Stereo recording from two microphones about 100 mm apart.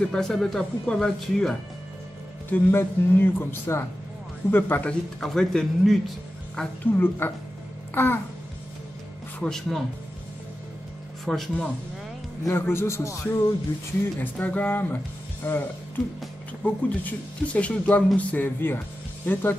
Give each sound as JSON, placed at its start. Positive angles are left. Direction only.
{"t": 0.0, "sound": "speech", "side_deg": 5}
{"t": 2.5, "sound": "a man's voice", "side_deg": 25}
{"t": 5.2, "sound": "speech", "side_deg": 5}
{"t": 7.0, "sound": "a man's voice", "side_deg": 20}
{"t": 7.9, "sound": "babbling", "side_deg": 20}
{"t": 9.4, "sound": "speech", "side_deg": 5}
{"t": 11.2, "sound": "speech", "side_deg": 5}
{"t": 12.4, "sound": "a man's voice", "side_deg": 25}
{"t": 14.2, "sound": "a man's voice", "side_deg": 15}
{"t": 16.6, "sound": "a man's voice", "side_deg": 15}